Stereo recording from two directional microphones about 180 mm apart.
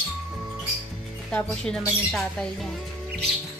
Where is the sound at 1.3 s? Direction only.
5° left (ahead or behind).